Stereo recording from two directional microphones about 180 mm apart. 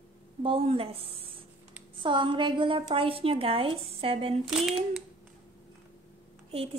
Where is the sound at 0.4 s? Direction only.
30° right (ahead or behind).